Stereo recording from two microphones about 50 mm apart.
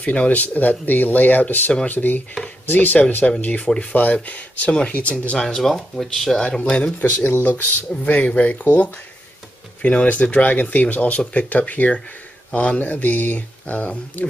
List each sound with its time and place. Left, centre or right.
0.0 s speech: left
5.4 s speech: centre
6.6 s speech: left
7.0 s speech: left